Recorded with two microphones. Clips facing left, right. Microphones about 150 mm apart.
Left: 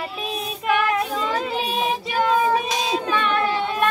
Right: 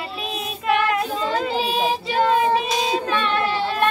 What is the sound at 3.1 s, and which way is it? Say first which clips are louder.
Child singing: even; 30° right (ahead or behind).